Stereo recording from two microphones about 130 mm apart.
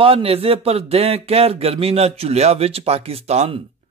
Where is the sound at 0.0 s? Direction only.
50° right (ahead or behind).